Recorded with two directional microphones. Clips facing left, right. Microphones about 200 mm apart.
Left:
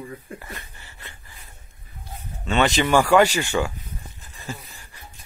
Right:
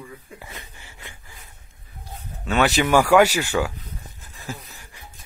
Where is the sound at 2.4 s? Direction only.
5° right (ahead or behind).